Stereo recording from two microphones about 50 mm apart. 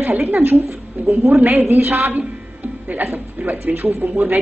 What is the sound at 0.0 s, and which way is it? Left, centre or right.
A woman's voice, right.